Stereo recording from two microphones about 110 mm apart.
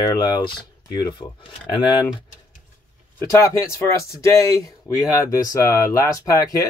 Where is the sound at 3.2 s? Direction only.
25° left (ahead or behind).